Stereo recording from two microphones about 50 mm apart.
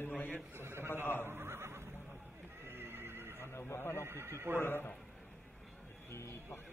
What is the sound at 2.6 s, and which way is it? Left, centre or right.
Neigh, right.